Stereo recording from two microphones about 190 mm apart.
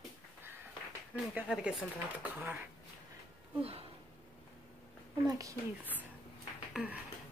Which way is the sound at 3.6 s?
30° right (ahead or behind).